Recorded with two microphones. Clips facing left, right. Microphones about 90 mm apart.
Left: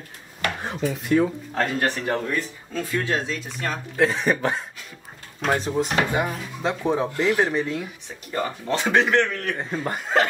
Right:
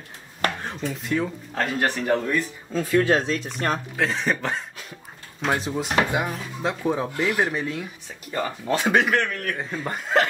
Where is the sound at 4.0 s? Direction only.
5° left (ahead or behind).